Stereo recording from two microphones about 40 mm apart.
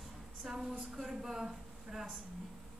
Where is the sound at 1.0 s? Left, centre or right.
Centre.